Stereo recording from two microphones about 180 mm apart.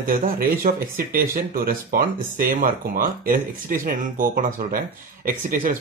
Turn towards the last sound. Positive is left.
turn(degrees=-50)  # may be behind; listen again after turning